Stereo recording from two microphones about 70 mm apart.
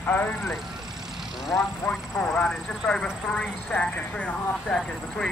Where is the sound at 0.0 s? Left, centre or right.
Left.